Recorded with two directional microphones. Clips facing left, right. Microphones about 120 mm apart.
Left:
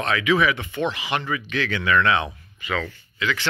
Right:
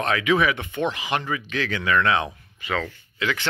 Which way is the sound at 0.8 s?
40° right (ahead or behind).